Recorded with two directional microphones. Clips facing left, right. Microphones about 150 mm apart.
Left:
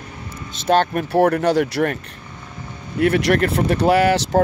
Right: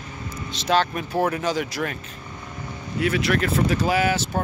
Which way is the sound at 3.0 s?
65° left (ahead or behind).